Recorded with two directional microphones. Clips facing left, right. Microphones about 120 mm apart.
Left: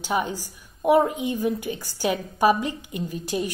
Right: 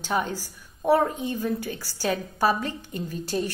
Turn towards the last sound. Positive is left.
turn(degrees=15)  # may be behind; listen again after turning